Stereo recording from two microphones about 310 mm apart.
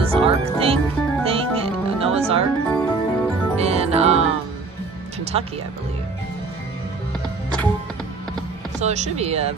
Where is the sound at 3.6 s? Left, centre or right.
Centre.